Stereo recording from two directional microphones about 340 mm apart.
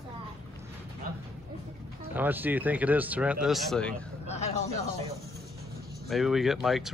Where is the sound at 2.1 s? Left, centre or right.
Centre.